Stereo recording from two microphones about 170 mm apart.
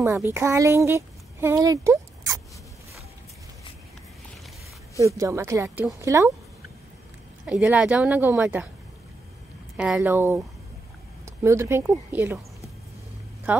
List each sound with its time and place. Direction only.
0.3 s speech: 15° right (ahead or behind)
4.9 s speech: 20° right (ahead or behind)
7.4 s speech: 5° right (ahead or behind)
9.8 s speech: 5° right (ahead or behind)
11.4 s speech: 15° right (ahead or behind)
13.5 s a woman's voice: 10° right (ahead or behind)